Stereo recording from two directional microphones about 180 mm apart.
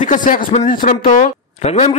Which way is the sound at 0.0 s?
45° left (ahead or behind).